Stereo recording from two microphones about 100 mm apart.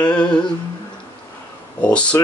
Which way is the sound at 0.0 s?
10° left (ahead or behind).